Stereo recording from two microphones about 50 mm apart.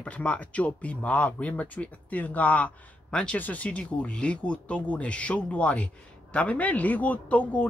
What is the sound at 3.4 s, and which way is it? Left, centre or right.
Speech, left.